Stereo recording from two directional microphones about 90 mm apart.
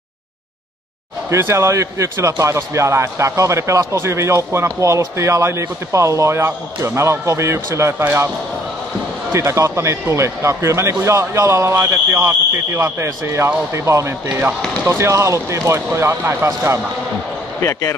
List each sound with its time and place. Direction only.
1.3 s speech: 30° right (ahead or behind)
9.3 s speech: 30° right (ahead or behind)
17.6 s a man's voice: 30° left (ahead or behind)